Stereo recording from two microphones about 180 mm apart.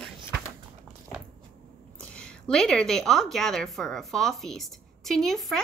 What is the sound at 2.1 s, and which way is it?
A woman's voice, 5° left (ahead or behind).